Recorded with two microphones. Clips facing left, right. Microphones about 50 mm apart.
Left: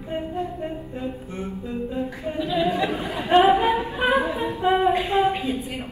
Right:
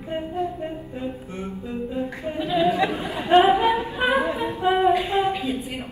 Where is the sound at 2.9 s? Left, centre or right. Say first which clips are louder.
Right 1 dB; centre.